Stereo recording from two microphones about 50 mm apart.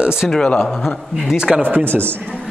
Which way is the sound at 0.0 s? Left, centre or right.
Centre.